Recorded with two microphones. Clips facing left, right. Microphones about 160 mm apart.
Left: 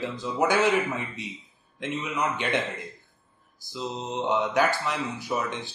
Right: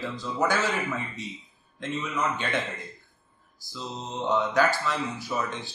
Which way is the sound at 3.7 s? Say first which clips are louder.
Left 4 dB; 20° left (ahead or behind).